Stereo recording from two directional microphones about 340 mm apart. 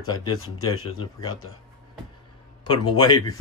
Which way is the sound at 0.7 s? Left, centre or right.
Left.